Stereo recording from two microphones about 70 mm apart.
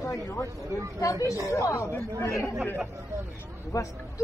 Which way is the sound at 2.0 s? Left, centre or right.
Left.